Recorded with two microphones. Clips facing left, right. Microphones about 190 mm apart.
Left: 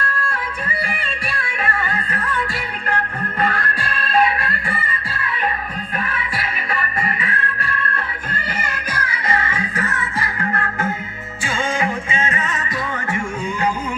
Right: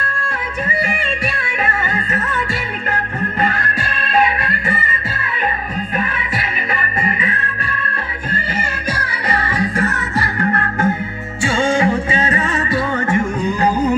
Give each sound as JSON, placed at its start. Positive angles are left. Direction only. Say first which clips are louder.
{"t": 7.0, "sound": "music", "louder": "right 3 dB", "side_deg": -20}
{"t": 8.5, "sound": "music", "louder": "right 4 dB", "side_deg": -30}